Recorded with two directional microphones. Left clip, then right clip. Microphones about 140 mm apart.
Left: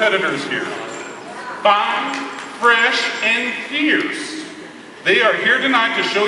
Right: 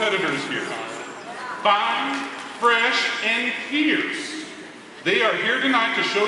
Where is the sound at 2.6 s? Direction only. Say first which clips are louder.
Left 5 dB; 20° left (ahead or behind).